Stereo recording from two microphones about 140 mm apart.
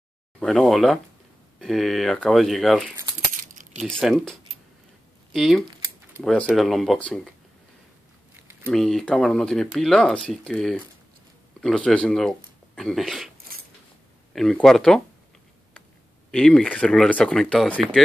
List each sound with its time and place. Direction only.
0.4 s speech: centre (ahead or behind)
3.3 s coin: 65° right (ahead or behind)
3.8 s speech: centre (ahead or behind)
8.6 s speech: 5° left (ahead or behind)
14.3 s speech: 5° left (ahead or behind)
16.3 s speech: 5° left (ahead or behind)